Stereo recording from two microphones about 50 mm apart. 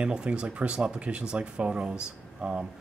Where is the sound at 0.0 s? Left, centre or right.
Right.